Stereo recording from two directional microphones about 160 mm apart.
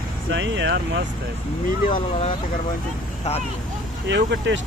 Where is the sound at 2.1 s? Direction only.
45° left (ahead or behind).